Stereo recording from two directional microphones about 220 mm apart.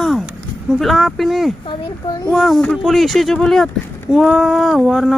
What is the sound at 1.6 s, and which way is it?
Speech, 20° left (ahead or behind).